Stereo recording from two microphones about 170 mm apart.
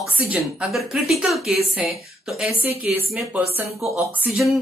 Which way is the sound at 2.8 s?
10° right (ahead or behind).